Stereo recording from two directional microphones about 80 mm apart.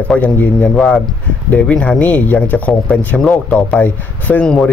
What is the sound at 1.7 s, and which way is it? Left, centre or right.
Speech, centre.